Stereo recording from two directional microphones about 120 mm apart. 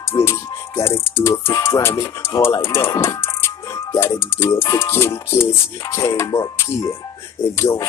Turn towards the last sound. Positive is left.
turn(degrees=25)  # may be behind; listen again after turning